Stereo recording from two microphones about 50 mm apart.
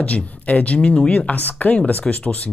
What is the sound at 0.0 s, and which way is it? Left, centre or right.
Speech, left.